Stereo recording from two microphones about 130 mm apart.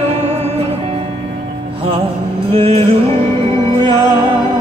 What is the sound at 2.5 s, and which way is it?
Music, 45° right (ahead or behind).